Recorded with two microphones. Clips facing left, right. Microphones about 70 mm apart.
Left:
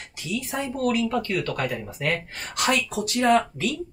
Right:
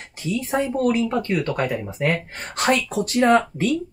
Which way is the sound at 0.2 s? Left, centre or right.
Right.